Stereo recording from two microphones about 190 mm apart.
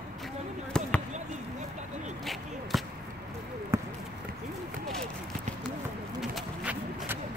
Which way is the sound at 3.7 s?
15° right (ahead or behind).